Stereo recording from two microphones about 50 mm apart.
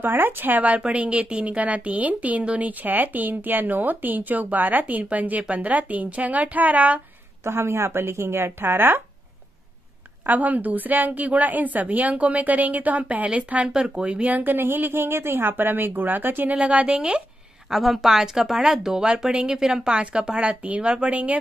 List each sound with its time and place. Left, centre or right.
0.0 s speech: right
7.4 s speech: right
10.2 s speech: right
14.3 s speech: right
16.5 s speech: right
17.6 s speech: centre; by 21.4 s right